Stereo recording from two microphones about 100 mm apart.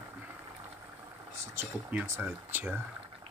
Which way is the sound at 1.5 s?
25° right (ahead or behind).